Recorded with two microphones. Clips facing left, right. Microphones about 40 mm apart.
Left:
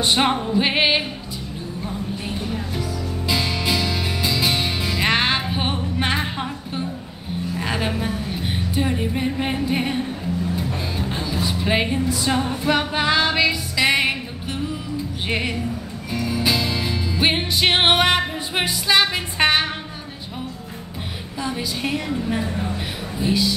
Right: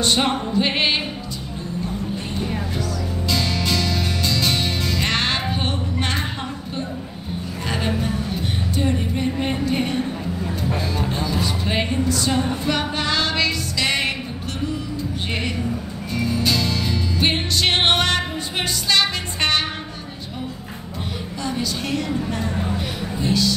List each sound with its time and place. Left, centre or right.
0.0 s a woman's voice: centre
2.8 s music: centre
7.6 s music: centre
11.0 s music: centre
15.2 s speech: centre
16.1 s music: centre
21.4 s a woman's voice: centre